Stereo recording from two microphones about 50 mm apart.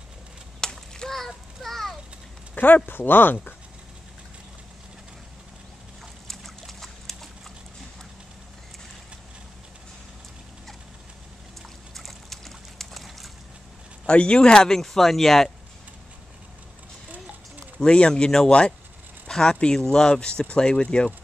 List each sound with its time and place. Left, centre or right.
0.6 s a sound: centre
2.5 s speech: left
6.2 s boat: centre
11.9 s a sound: centre
14.0 s speech: left
17.7 s speech: centre